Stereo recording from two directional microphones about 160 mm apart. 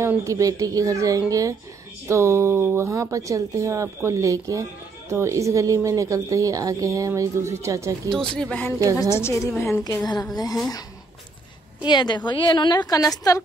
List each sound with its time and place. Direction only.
0.0 s a woman's voice: 15° right (ahead or behind)
8.1 s speech: 5° left (ahead or behind); by 10.6 s 25° left (ahead or behind)
11.8 s speech: 30° left (ahead or behind)